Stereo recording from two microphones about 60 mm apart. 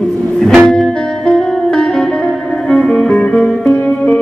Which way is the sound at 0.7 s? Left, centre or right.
Centre.